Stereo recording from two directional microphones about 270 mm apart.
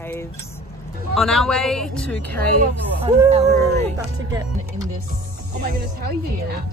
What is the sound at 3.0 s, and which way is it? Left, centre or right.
Speech, centre.